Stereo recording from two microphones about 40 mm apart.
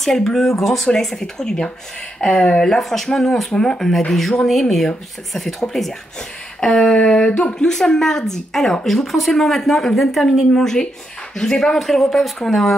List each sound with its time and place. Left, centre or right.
0.0 s speech: centre; by 2.6 s left
2.6 s speech: centre
6.6 s speech: centre
7.5 s speech: centre